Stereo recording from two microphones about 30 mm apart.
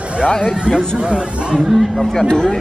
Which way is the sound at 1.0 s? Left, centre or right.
Right.